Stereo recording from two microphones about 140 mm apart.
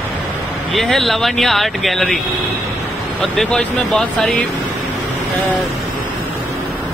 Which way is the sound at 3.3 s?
Centre (ahead or behind).